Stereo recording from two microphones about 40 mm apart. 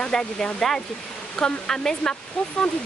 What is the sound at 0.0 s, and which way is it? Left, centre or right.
Speech, centre.